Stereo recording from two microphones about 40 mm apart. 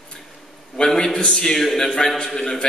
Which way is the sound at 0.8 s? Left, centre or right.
Centre.